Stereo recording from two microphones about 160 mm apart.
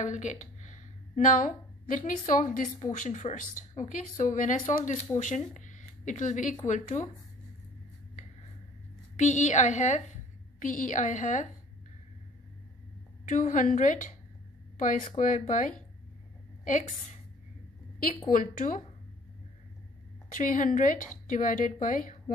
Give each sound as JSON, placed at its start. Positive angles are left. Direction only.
{"t": 0.0, "sound": "a woman's voice", "side_deg": 50}
{"t": 9.2, "sound": "a woman's voice", "side_deg": 50}
{"t": 13.2, "sound": "a woman's voice", "side_deg": 50}
{"t": 18.3, "sound": "speech", "side_deg": 55}
{"t": 20.2, "sound": "speech", "side_deg": 55}